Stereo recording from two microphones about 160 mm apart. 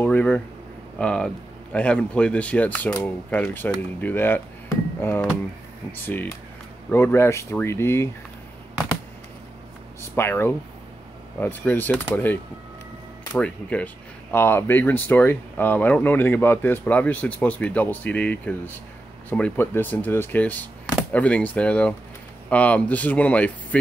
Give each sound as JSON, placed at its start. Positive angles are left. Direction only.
{"t": 0.0, "sound": "speech", "side_deg": 10}
{"t": 10.1, "sound": "speech", "side_deg": 15}